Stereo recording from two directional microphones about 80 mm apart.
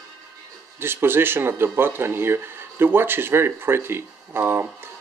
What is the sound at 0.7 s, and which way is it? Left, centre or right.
Speech, right.